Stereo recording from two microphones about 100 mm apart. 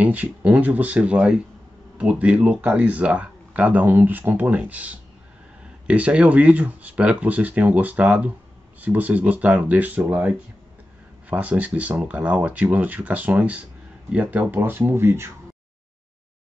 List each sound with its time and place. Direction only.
0.0 s speech: 15° right (ahead or behind)